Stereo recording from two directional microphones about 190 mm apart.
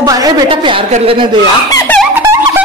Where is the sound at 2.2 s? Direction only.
15° right (ahead or behind).